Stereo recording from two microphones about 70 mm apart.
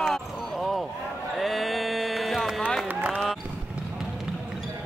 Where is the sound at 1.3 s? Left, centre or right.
Centre.